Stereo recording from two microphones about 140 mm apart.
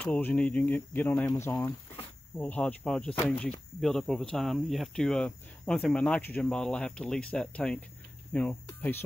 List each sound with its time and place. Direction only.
0.0 s speech: 10° left (ahead or behind)